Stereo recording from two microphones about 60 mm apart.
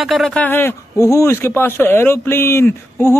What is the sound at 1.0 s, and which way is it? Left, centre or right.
Speech, left.